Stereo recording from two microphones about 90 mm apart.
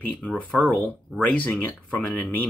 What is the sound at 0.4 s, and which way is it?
Speech, 15° left (ahead or behind).